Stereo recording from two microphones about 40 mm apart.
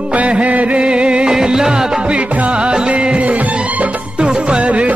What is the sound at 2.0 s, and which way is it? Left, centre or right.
Music, right.